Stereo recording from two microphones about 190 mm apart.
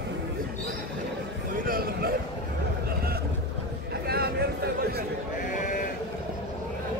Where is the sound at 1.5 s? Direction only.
50° right (ahead or behind).